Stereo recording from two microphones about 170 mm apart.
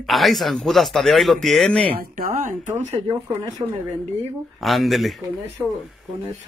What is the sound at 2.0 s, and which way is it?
Speech, 55° right (ahead or behind).